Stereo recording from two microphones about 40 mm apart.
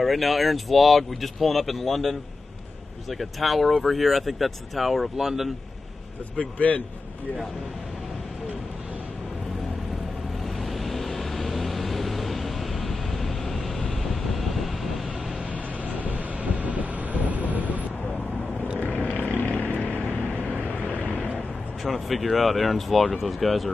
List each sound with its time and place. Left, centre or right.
0.0 s speech: centre
6.3 s a man's voice: left
10.6 s vehicle: centre
15.9 s vehicle: right
18.9 s vehicle: left
21.0 s a sound: left
21.8 s speech: centre